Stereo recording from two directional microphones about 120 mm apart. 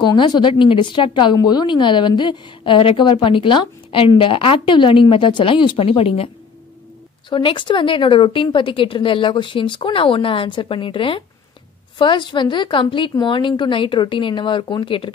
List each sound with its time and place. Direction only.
0.0 s a woman's voice: 40° left (ahead or behind)
7.2 s a woman's voice: 40° left (ahead or behind)